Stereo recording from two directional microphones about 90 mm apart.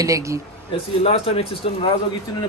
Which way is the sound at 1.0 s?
90° left.